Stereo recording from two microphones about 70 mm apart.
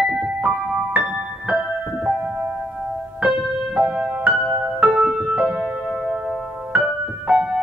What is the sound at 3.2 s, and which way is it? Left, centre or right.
Music, centre.